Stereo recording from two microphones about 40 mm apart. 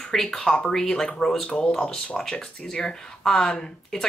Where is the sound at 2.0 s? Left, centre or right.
Centre.